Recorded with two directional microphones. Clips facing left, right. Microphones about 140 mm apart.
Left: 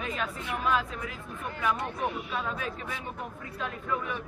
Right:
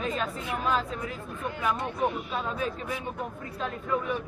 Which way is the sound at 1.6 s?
15° right (ahead or behind).